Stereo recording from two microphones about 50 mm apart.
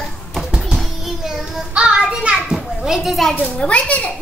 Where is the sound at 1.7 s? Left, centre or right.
Right.